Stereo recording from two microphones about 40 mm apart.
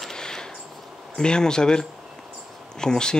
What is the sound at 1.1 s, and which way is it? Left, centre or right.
Speech, left.